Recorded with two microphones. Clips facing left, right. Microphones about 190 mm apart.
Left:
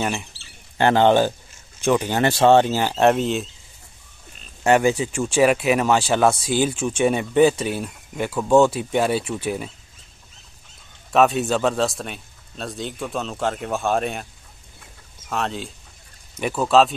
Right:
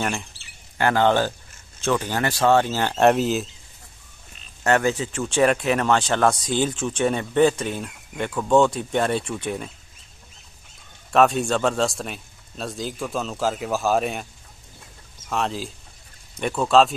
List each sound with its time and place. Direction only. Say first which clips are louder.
0.7 s speech: left 3 dB; 25° left (ahead or behind)
2.8 s speech: even; 5° left (ahead or behind)
4.6 s speech: left 3 dB; 15° left (ahead or behind)
11.1 s speech: left 1 dB; centre (ahead or behind)
15.2 s speech: even; centre (ahead or behind)